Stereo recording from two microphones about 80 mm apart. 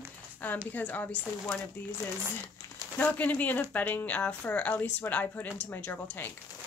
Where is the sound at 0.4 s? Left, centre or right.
Centre.